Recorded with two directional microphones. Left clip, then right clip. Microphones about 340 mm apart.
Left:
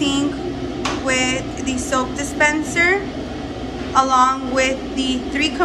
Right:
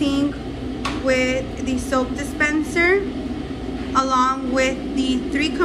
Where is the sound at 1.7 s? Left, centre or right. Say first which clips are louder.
Left 2 dB; centre.